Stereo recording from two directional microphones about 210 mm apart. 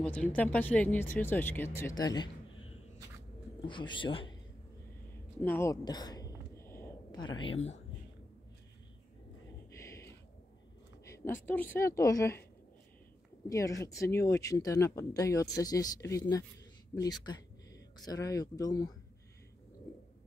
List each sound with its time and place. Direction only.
0.0 s speech: 5° left (ahead or behind)
3.6 s a man's voice: 25° left (ahead or behind)
5.4 s a sound: 10° left (ahead or behind)
9.8 s a sound: 15° left (ahead or behind)
11.4 s speech: 10° left (ahead or behind)
13.5 s speech: 15° left (ahead or behind)